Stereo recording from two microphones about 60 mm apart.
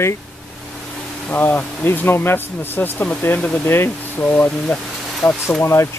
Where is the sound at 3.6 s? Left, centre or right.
Left.